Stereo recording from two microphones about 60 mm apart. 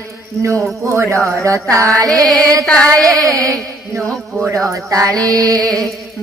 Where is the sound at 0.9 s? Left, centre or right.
Right.